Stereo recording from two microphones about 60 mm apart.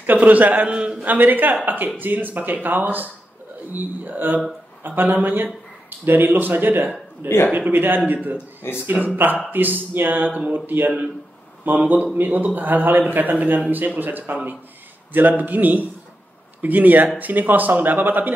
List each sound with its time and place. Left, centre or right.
0.0 s speech: right
1.0 s speech: right
8.6 s speech: left
9.0 s speech: right